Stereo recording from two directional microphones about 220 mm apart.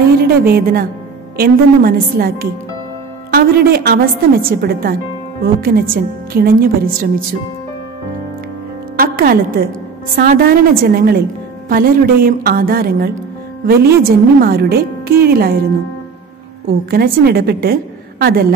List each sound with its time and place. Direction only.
0.2 s a woman's voice: 45° right (ahead or behind)
8.9 s a woman's voice: 40° right (ahead or behind)
16.9 s a woman's voice: 45° right (ahead or behind)